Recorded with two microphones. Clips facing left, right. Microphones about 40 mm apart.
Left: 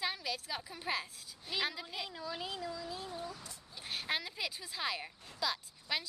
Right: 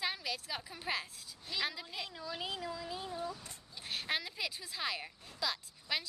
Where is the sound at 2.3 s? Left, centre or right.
Centre.